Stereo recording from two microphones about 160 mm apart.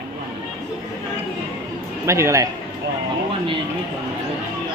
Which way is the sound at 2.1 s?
20° right (ahead or behind).